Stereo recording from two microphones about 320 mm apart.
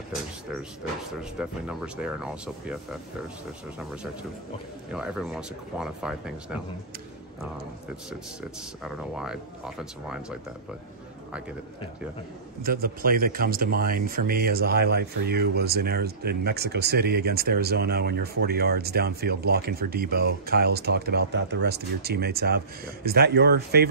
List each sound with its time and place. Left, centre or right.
1.4 s speech: centre
8.8 s speech: centre
12.6 s speech: right